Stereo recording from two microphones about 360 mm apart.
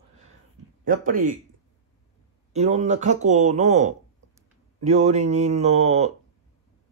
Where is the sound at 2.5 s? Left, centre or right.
Centre.